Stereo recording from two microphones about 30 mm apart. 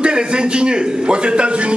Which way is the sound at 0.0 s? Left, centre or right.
Right.